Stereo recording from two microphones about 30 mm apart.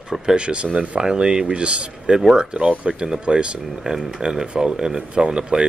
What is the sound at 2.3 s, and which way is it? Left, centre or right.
Speech, right.